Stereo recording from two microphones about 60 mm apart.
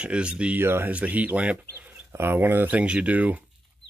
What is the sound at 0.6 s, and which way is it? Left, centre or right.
Speech, right.